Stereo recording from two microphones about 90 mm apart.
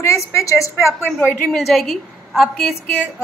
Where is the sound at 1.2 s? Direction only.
Centre (ahead or behind).